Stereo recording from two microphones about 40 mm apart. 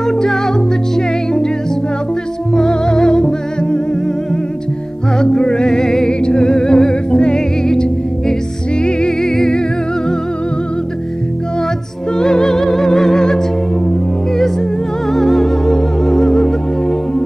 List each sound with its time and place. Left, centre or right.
0.0 s music: centre
2.5 s music: centre
5.2 s music: left
12.2 s music: centre
15.1 s music: centre